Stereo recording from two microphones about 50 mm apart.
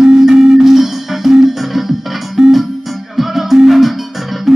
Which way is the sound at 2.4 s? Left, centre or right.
Centre.